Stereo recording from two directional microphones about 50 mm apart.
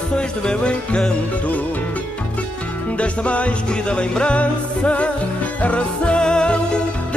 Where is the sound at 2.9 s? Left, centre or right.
Left.